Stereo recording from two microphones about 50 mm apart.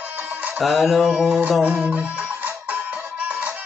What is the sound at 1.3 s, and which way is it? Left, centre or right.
Music, right.